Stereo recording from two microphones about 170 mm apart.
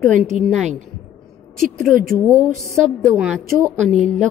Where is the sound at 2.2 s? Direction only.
15° right (ahead or behind).